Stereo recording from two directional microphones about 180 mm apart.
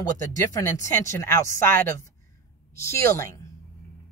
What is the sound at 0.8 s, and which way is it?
Speech, 15° left (ahead or behind).